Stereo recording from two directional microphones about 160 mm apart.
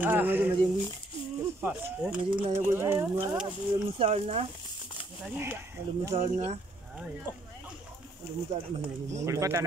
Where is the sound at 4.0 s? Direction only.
40° right (ahead or behind).